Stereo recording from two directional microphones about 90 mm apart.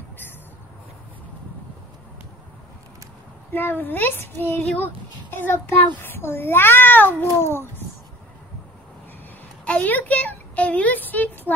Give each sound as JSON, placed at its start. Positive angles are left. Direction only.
{"t": 3.5, "sound": "a child's voice", "side_deg": 20}
{"t": 9.7, "sound": "a woman's voice", "side_deg": 15}